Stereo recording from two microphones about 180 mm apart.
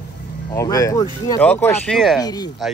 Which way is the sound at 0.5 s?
20° left (ahead or behind).